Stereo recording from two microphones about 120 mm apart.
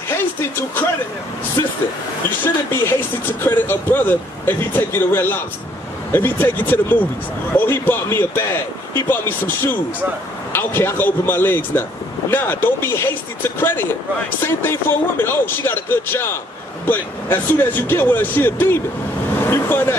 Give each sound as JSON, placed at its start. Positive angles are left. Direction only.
{"t": 0.2, "sound": "a sound", "side_deg": 15}
{"t": 1.6, "sound": "vehicle", "side_deg": 25}
{"t": 2.4, "sound": "speech", "side_deg": 20}